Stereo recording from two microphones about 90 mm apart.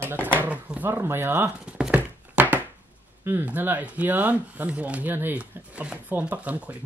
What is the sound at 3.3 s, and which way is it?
Speech, 20° right (ahead or behind).